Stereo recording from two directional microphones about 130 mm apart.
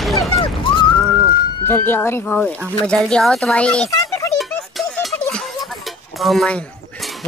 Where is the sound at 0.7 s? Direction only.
40° left (ahead or behind).